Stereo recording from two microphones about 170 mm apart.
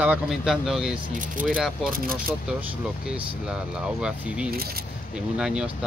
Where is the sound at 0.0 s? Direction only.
5° right (ahead or behind).